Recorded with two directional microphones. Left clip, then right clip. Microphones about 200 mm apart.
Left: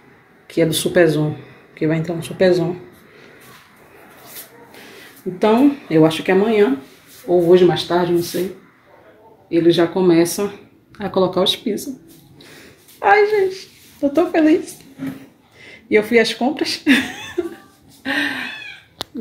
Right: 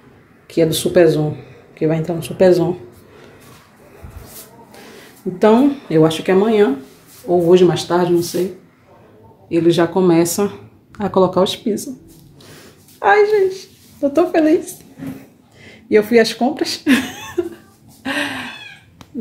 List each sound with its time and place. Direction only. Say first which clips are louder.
0.5 s speech: right 2 dB; 5° right (ahead or behind)
5.4 s speech: right 2 dB; 10° right (ahead or behind)
9.5 s speech: even; 10° right (ahead or behind)
13.0 s speech: right 1 dB; 5° right (ahead or behind)
18.0 s cat: left 1 dB; 10° right (ahead or behind)